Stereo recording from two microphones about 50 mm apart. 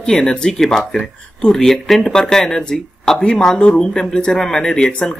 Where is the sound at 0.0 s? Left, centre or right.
Centre.